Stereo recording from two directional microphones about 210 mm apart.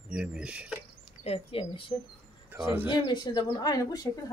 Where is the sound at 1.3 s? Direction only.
25° left (ahead or behind).